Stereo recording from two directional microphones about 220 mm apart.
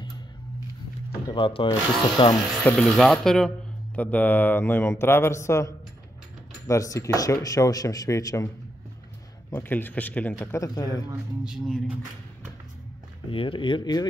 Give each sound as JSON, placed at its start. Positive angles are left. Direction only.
{"t": 1.3, "sound": "speech", "side_deg": 20}
{"t": 3.0, "sound": "speech", "side_deg": 0}
{"t": 6.7, "sound": "speech", "side_deg": 15}
{"t": 9.5, "sound": "speech", "side_deg": 10}
{"t": 11.4, "sound": "speech", "side_deg": 0}
{"t": 13.3, "sound": "speech", "side_deg": 25}